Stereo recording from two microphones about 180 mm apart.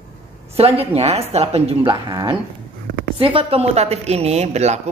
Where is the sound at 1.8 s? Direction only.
25° right (ahead or behind).